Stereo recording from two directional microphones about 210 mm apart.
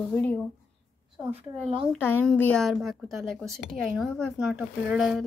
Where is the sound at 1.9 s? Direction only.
10° left (ahead or behind).